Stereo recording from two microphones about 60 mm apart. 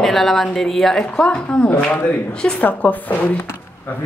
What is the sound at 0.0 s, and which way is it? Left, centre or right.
A woman's voice, centre.